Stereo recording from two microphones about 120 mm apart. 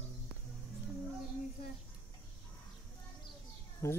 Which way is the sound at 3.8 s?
20° left (ahead or behind).